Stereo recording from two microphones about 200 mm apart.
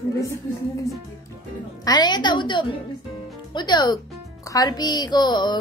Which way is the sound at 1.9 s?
20° left (ahead or behind).